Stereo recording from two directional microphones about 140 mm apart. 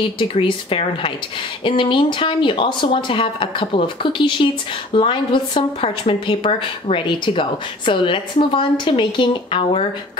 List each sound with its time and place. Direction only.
0.2 s a woman's voice: 35° left (ahead or behind)